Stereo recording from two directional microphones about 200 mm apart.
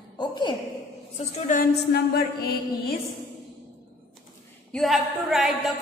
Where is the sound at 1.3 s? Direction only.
45° left (ahead or behind).